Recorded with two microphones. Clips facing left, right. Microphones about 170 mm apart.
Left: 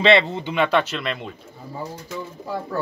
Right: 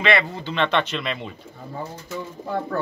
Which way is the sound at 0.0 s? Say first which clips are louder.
Left 5 dB; 25° left (ahead or behind).